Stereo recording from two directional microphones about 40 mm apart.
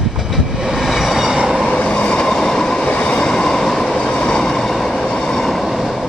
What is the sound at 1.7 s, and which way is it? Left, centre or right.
Train, left.